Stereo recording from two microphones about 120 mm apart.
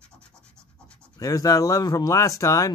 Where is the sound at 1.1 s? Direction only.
30° left (ahead or behind).